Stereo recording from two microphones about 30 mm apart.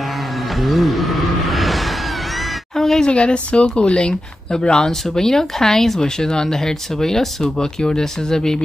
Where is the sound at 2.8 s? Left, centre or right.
Centre.